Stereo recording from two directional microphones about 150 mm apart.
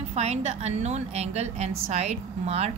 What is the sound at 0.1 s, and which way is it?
A woman's voice, 45° right (ahead or behind).